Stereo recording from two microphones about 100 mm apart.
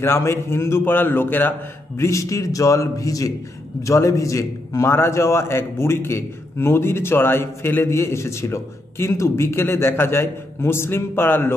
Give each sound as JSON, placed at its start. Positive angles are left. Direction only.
{"t": 0.0, "sound": "a man's voice", "side_deg": 30}
{"t": 2.0, "sound": "a man's voice", "side_deg": 30}